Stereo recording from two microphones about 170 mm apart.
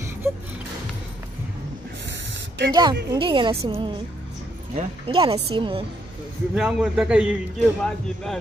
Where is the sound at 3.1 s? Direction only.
30° right (ahead or behind).